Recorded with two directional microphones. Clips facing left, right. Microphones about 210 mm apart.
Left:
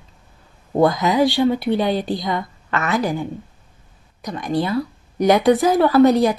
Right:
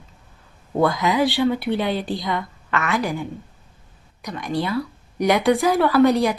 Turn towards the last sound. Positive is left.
turn(degrees=45)  # may be behind; listen again after turning